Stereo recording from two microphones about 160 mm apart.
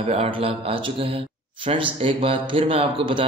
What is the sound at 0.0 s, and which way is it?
Speech, 40° right (ahead or behind).